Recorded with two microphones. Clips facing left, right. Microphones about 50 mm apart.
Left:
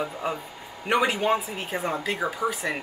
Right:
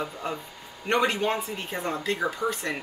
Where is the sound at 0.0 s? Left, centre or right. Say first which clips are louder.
Left 3 dB; centre.